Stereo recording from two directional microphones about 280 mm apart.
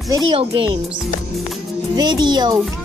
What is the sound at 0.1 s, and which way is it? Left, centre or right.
Speech, centre.